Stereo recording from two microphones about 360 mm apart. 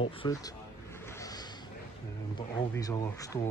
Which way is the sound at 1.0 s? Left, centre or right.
Centre.